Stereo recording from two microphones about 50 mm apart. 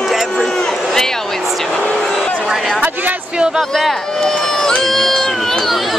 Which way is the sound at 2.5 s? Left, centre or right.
Centre.